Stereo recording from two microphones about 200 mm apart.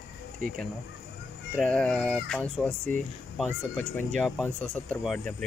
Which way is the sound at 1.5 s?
5° left (ahead or behind).